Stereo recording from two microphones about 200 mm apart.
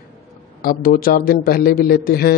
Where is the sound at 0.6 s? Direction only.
45° left (ahead or behind).